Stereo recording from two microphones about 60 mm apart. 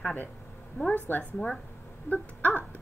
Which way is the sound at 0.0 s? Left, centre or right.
Left.